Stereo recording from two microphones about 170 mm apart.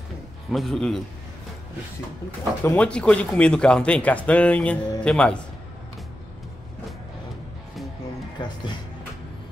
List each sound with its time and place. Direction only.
0.5 s a man's voice: centre (ahead or behind)
2.6 s speech: 10° left (ahead or behind)
8.4 s speech: 25° left (ahead or behind)